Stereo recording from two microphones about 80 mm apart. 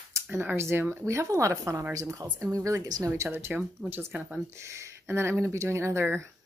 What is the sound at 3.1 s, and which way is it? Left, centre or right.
Speech, right.